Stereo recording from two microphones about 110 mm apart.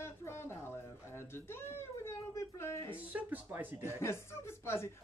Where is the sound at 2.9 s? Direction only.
15° right (ahead or behind).